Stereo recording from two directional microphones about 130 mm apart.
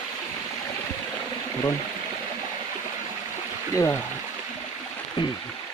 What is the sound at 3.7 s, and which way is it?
Speech, 25° left (ahead or behind).